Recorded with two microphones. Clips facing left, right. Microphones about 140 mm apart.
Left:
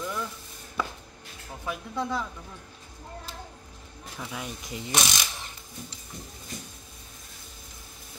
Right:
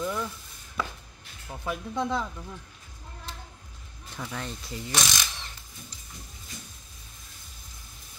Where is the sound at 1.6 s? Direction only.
15° right (ahead or behind).